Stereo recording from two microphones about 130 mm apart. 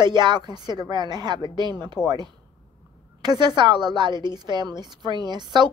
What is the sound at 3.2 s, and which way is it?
A woman's voice, 35° right (ahead or behind).